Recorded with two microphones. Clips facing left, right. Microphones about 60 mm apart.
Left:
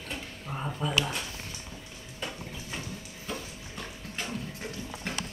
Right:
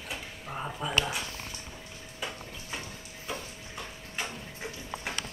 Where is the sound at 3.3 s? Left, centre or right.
Centre.